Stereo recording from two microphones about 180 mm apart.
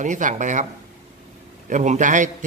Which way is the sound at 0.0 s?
45° right (ahead or behind).